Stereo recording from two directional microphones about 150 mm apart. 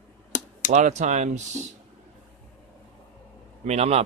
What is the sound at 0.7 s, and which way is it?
Speech, 50° right (ahead or behind).